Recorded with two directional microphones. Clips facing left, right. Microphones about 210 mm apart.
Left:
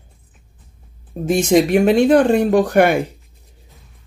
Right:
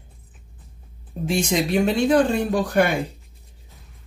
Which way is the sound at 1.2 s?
45° left (ahead or behind).